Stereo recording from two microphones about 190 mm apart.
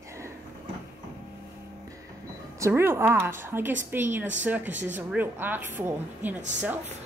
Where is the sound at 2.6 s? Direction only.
15° right (ahead or behind).